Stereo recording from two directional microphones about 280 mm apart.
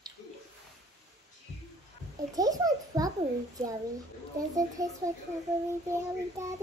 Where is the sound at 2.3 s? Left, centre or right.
Centre.